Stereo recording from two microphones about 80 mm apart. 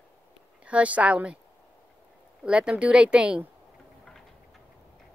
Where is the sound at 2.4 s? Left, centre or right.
Centre.